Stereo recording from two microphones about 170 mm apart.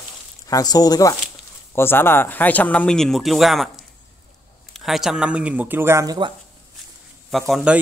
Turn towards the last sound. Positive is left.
turn(degrees=0)  # may be behind; listen again after turning